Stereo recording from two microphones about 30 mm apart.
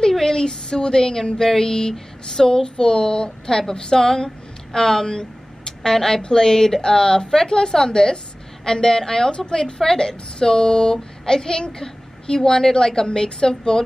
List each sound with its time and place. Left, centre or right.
0.2 s a woman's voice: left
9.5 s speech: left